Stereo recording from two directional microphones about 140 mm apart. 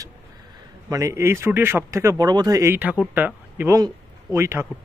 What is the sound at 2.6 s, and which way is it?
A man's voice, 15° right (ahead or behind).